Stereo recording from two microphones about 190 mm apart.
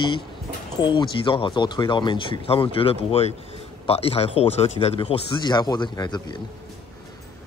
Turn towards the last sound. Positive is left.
turn(degrees=20)  # may be behind; listen again after turning